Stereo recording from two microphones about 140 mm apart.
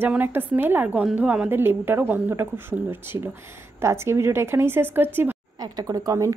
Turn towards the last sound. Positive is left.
turn(degrees=-25)  # may be behind; listen again after turning